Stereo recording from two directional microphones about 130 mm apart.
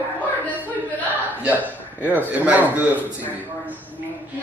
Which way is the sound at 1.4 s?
10° right (ahead or behind).